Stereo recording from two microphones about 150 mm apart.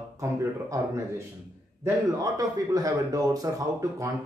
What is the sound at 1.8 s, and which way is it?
Speech, 25° right (ahead or behind).